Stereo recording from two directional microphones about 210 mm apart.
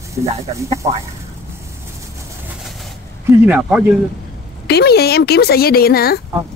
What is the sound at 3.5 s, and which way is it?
Speech, 5° right (ahead or behind).